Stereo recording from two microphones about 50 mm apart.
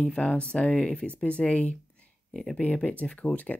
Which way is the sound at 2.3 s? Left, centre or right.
Centre.